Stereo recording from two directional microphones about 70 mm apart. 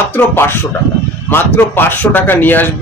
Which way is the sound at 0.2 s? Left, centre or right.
Left.